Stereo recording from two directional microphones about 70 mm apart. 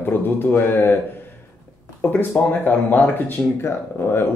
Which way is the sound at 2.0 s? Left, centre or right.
Left.